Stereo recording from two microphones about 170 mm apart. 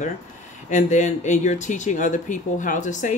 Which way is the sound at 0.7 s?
45° left (ahead or behind).